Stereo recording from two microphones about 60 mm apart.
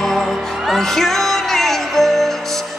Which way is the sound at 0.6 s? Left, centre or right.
Centre.